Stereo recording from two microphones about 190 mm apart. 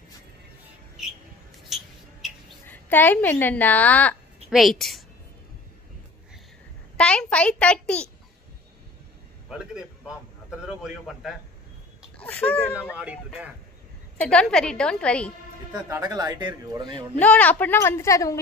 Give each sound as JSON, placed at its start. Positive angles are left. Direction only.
{"t": 2.7, "sound": "a woman's voice", "side_deg": 10}
{"t": 7.0, "sound": "a child's voice", "side_deg": 5}
{"t": 9.5, "sound": "a child's voice", "side_deg": -5}
{"t": 12.9, "sound": "speech", "side_deg": -5}
{"t": 14.2, "sound": "a child's voice", "side_deg": 5}
{"t": 15.7, "sound": "speech", "side_deg": -20}
{"t": 17.2, "sound": "a woman's voice", "side_deg": 10}